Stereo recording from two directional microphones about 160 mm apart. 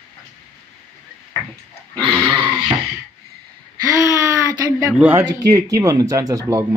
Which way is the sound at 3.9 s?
20° right (ahead or behind).